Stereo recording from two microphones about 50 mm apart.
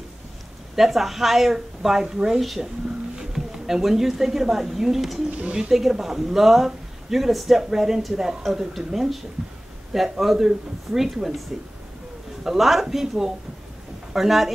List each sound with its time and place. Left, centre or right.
0.7 s speech: centre
5.3 s speech: right
5.7 s a woman's voice: centre
12.4 s a woman's voice: centre